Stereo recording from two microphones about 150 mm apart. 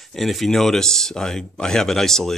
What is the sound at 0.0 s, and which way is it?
Speech, centre (ahead or behind).